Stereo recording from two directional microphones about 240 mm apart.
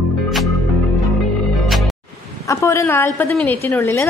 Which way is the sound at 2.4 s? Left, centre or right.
Centre.